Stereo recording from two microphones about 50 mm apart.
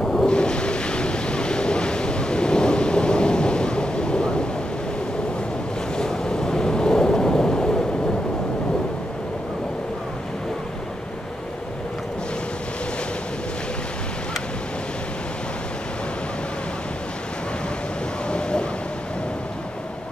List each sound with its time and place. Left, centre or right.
0.0 s ocean: centre
5.9 s thunder: centre
18.3 s vehicle: centre